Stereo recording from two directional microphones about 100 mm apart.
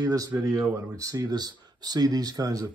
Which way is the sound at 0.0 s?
35° right (ahead or behind).